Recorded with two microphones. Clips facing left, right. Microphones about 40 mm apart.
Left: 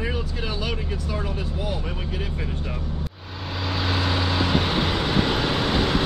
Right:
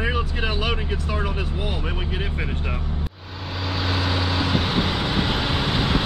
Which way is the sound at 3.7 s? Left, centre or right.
Centre.